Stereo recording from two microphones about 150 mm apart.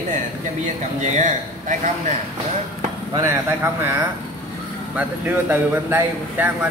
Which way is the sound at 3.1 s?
20° right (ahead or behind).